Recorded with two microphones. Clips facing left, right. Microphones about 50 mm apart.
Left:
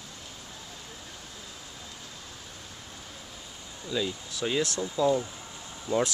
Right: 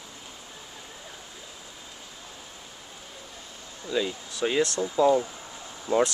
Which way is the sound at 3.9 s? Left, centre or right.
Centre.